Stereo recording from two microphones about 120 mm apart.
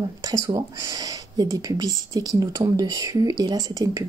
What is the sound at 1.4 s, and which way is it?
Speech, 30° right (ahead or behind).